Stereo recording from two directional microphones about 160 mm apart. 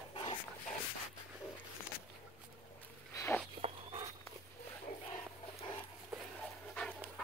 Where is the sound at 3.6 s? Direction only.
30° right (ahead or behind).